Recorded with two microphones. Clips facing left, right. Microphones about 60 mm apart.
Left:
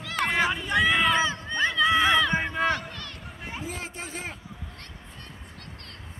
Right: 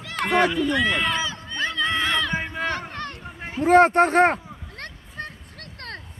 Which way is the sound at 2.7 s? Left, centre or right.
Right.